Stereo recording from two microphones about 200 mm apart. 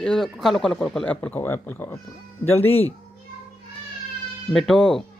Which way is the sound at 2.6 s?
30° left (ahead or behind).